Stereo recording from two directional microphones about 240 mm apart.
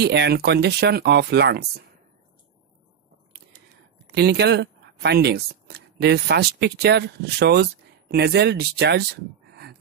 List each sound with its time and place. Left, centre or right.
0.0 s speech: right
4.1 s speech: right